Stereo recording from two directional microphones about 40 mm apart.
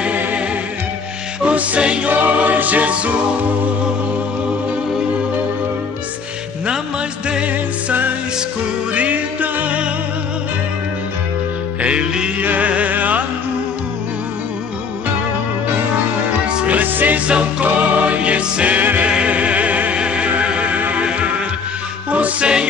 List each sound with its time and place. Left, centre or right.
1.4 s music: right
2.0 s music: right
7.4 s music: right
11.8 s music: right
12.4 s music: right
16.8 s music: right
17.3 s music: right
18.8 s music: right
19.0 s music: right